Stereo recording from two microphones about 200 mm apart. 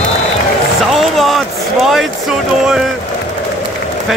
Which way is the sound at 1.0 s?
Centre (ahead or behind).